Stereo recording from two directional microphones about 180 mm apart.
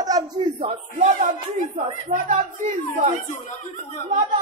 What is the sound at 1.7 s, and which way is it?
Speech, 45° right (ahead or behind).